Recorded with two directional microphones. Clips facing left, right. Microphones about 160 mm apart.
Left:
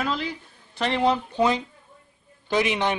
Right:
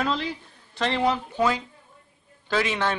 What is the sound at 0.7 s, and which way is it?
Speech, 15° left (ahead or behind).